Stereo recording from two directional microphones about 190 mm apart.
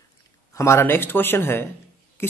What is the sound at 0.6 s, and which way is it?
Speech, 15° left (ahead or behind).